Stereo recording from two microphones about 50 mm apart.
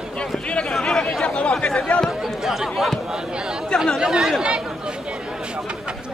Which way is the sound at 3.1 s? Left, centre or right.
Centre.